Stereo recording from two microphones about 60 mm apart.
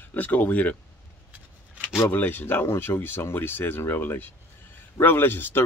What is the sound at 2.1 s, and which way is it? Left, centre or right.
Speech, left.